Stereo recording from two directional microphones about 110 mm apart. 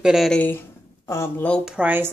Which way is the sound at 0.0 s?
5° right (ahead or behind).